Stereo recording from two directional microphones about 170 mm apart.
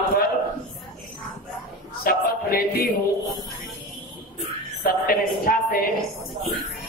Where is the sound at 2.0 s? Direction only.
60° left (ahead or behind).